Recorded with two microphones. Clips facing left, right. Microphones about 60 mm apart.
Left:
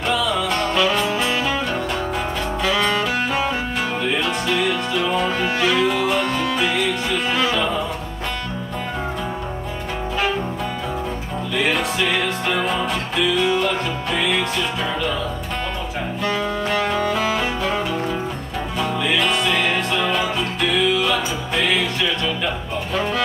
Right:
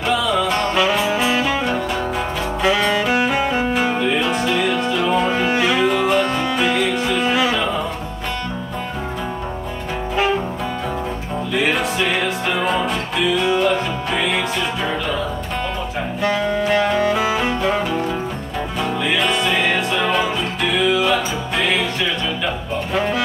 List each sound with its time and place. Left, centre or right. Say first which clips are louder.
0.1 s music: right 3 dB; centre
2.6 s saxophone: right 3 dB; centre
3.2 s music: right 3 dB; centre
5.2 s music: right 2 dB; right
5.9 s music: right 3 dB; centre
11.5 s music: right 1 dB; centre
16.2 s music: right 4 dB; centre
22.9 s music: right 2 dB; centre